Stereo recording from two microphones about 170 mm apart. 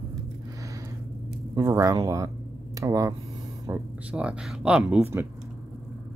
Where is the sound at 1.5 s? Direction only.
20° right (ahead or behind).